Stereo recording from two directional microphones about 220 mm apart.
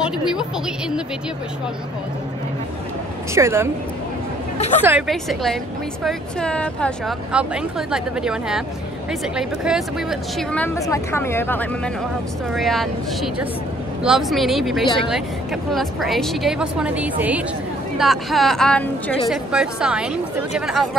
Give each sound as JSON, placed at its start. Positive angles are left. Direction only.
{"t": 0.0, "sound": "a woman's voice", "side_deg": -5}
{"t": 3.3, "sound": "speech", "side_deg": -10}
{"t": 4.6, "sound": "a woman's voice", "side_deg": 30}
{"t": 4.8, "sound": "a woman's voice", "side_deg": -5}